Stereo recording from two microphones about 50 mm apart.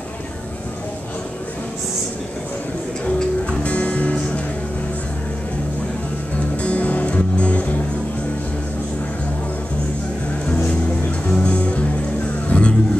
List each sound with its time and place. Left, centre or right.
3.2 s music: left
6.3 s music: left
11.1 s music: left